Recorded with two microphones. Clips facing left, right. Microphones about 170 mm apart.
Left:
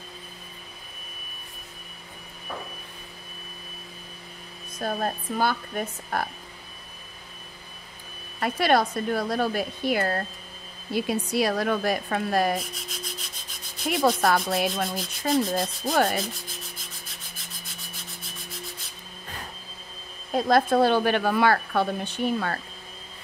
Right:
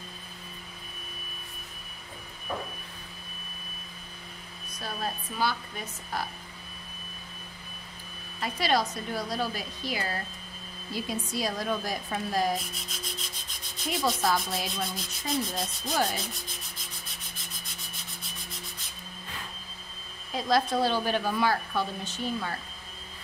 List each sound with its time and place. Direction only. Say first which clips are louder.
4.7 s a woman's voice: left 7 dB; 50° left (ahead or behind)
8.4 s speech: left 5 dB; 60° left (ahead or behind)
12.5 s rub: left 4 dB; centre (ahead or behind)
13.8 s speech: left 6 dB; 60° left (ahead or behind)
16.2 s rub: left 6 dB; centre (ahead or behind)
20.3 s speech: left 6 dB; 55° left (ahead or behind)